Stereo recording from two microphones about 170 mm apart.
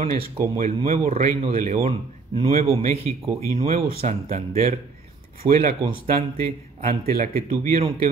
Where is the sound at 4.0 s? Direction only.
45° right (ahead or behind).